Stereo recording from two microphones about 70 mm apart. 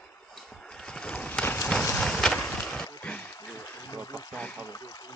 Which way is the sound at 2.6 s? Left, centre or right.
Centre.